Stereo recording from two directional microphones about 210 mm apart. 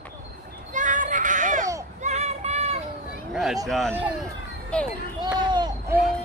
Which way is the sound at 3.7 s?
Centre (ahead or behind).